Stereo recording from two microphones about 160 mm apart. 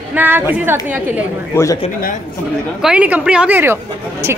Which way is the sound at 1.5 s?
20° left (ahead or behind).